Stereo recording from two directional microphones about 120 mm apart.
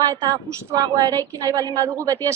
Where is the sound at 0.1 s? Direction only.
30° right (ahead or behind).